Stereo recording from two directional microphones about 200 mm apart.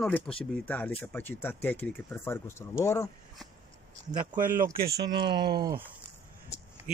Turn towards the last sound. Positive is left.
turn(degrees=-20)  # may be behind; listen again after turning